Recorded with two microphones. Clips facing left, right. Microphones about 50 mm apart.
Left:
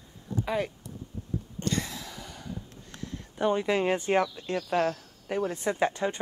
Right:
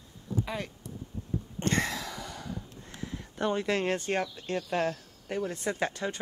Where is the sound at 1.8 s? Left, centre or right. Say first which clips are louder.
Right 4 dB; right.